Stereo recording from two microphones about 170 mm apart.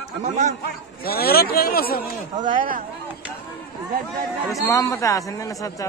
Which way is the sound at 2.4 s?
50° right (ahead or behind).